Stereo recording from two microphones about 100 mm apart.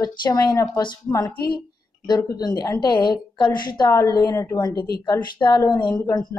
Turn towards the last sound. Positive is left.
turn(degrees=45)  # may be behind; listen again after turning